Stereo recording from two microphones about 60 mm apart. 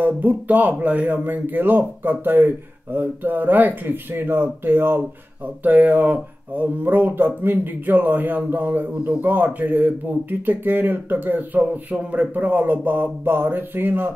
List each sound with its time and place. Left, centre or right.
0.0 s speech: right